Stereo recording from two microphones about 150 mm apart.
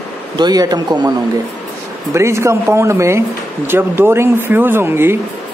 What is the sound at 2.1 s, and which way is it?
Speech, 20° right (ahead or behind).